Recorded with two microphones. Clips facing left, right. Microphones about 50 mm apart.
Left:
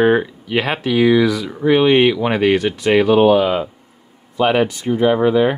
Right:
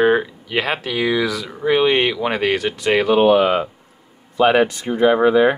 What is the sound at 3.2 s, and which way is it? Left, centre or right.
Speech, right.